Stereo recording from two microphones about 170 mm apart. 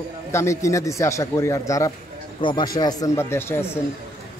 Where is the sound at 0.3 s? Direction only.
15° left (ahead or behind).